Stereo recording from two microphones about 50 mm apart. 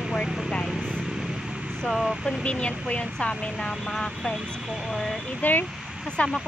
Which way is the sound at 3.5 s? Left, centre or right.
Centre.